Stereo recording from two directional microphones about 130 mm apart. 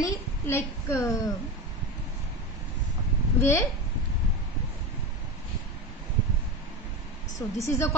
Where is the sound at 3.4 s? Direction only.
20° left (ahead or behind).